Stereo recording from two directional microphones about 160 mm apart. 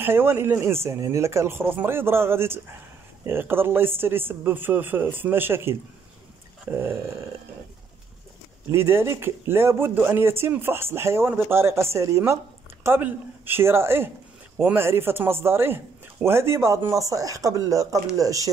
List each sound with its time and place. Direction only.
0.0 s speech: 15° right (ahead or behind)
8.7 s speech: 15° right (ahead or behind)